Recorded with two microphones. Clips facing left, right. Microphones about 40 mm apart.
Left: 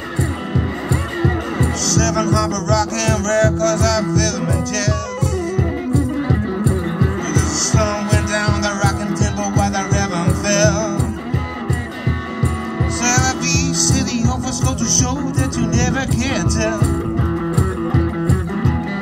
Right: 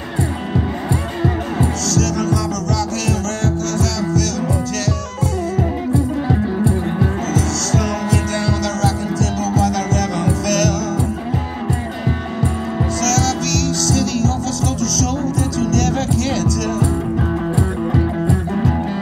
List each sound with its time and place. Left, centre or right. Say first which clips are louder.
1.9 s music: left 4 dB; left
7.7 s music: left 1 dB; left
13.0 s music: left 1 dB; left
15.6 s music: right 1 dB; left